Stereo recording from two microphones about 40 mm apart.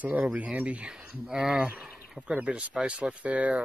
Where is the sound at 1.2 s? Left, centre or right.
Centre.